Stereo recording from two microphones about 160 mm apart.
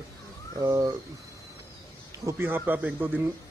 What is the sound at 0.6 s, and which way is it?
Speech, 20° right (ahead or behind).